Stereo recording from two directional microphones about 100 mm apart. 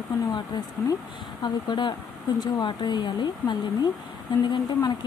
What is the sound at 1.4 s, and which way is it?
Speech, 50° left (ahead or behind).